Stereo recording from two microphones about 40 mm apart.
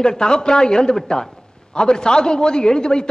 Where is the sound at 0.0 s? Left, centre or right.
Centre.